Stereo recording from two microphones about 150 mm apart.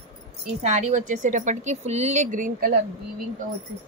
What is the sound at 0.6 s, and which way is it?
Speech, 50° right (ahead or behind).